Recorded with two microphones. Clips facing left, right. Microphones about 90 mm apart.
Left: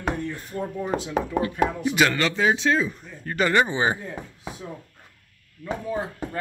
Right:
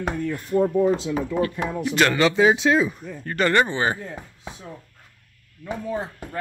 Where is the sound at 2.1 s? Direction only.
15° right (ahead or behind).